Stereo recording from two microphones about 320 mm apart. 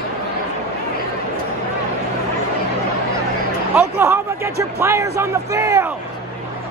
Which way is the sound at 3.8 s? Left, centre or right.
Centre.